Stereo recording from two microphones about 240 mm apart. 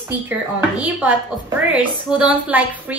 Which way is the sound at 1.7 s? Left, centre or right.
Centre.